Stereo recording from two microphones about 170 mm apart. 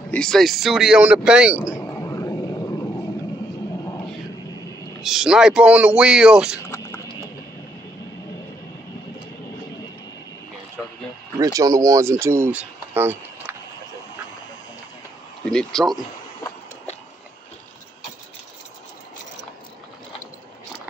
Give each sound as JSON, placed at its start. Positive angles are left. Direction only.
{"t": 0.1, "sound": "speech", "side_deg": 5}
{"t": 1.7, "sound": "a sound", "side_deg": 15}
{"t": 5.0, "sound": "speech", "side_deg": 0}
{"t": 6.7, "sound": "a sound", "side_deg": 15}
{"t": 11.3, "sound": "speech", "side_deg": -20}
{"t": 15.4, "sound": "speech", "side_deg": 5}